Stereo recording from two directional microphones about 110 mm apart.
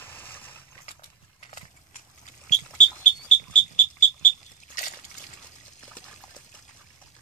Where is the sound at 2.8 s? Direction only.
90° left.